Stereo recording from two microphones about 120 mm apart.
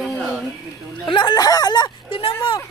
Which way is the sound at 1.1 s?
35° left (ahead or behind).